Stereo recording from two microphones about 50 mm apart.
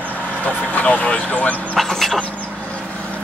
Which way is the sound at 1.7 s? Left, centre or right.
Centre.